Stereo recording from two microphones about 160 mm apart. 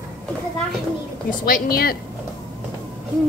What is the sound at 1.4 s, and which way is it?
Speech, 70° left (ahead or behind).